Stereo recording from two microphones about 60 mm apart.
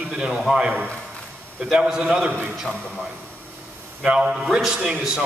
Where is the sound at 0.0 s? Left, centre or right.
Centre.